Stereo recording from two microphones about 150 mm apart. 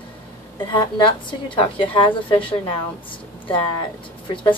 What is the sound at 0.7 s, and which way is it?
A woman's voice, 30° left (ahead or behind).